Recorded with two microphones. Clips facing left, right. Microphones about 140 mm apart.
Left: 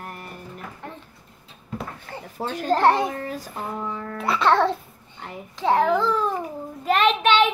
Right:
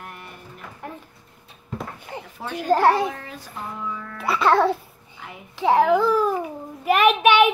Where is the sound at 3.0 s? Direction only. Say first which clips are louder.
Left 1 dB; 40° left (ahead or behind).